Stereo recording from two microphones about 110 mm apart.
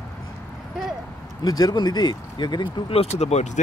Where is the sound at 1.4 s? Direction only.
35° left (ahead or behind).